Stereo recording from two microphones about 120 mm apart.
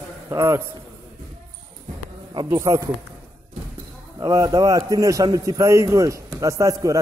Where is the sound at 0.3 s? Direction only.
25° right (ahead or behind).